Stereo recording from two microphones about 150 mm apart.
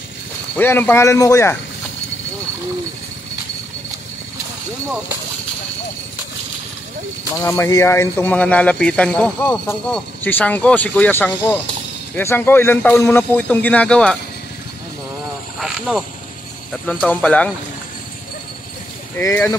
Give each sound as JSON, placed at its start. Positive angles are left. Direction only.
{"t": 0.6, "sound": "speech", "side_deg": 15}
{"t": 7.4, "sound": "speech", "side_deg": 20}
{"t": 16.8, "sound": "speech", "side_deg": 5}
{"t": 19.1, "sound": "speech", "side_deg": 15}